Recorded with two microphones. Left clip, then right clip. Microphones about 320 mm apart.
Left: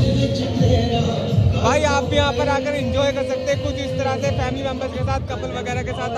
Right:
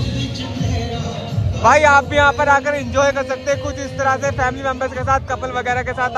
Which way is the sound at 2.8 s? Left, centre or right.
Centre.